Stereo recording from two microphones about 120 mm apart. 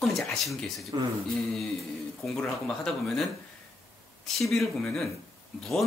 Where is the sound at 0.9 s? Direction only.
35° right (ahead or behind).